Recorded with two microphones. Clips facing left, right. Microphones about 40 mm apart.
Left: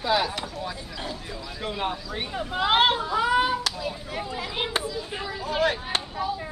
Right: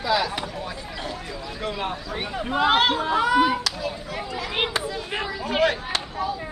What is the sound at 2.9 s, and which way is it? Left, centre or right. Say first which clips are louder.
Speech: right 3 dB; right.